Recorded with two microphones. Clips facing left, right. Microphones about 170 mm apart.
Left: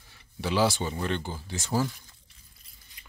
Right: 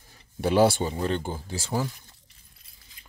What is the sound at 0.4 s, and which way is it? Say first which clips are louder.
Speech: right 5 dB; 55° right (ahead or behind).